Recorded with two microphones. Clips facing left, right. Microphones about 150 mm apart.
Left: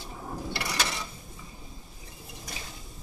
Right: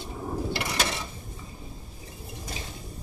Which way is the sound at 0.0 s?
25° right (ahead or behind).